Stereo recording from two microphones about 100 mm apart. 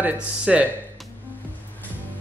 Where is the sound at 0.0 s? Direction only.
15° right (ahead or behind).